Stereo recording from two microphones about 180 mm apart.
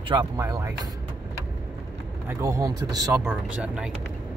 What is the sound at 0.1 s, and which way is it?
Speech, 20° right (ahead or behind).